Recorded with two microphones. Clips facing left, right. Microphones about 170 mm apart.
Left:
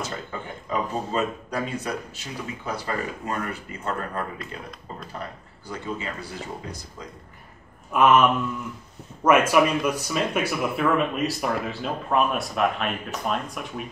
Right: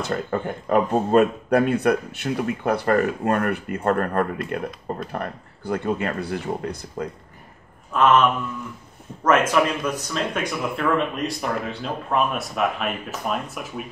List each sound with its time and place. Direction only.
0.0 s speech: 60° right (ahead or behind)
7.9 s speech: 10° left (ahead or behind)